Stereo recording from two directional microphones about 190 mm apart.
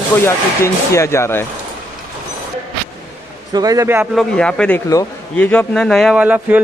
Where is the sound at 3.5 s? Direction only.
20° right (ahead or behind).